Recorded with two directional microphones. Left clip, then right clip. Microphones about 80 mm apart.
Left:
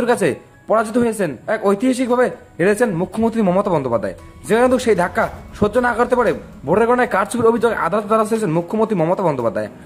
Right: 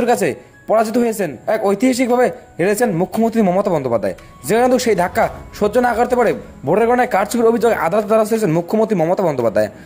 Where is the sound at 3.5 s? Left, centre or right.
Right.